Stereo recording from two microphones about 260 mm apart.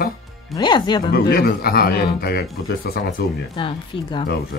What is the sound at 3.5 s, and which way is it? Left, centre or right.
Speech, centre.